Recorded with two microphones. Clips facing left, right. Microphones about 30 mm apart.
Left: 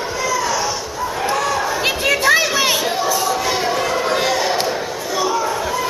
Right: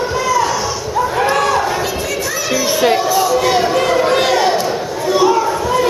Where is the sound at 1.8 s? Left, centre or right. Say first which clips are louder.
Left 3 dB; left.